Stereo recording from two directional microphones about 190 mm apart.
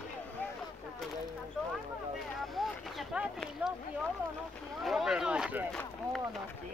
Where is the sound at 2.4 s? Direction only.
Centre (ahead or behind).